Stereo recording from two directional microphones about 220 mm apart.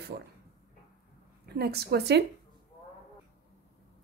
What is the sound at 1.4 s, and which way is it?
Speech, 45° right (ahead or behind).